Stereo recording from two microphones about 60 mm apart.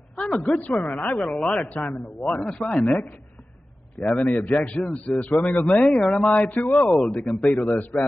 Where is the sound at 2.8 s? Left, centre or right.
Left.